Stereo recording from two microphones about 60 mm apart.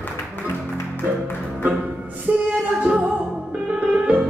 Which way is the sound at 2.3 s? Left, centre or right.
Right.